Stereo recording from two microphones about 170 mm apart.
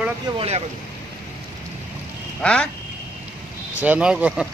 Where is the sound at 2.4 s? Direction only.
5° left (ahead or behind).